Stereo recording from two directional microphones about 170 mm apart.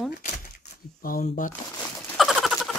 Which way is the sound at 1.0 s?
55° left (ahead or behind).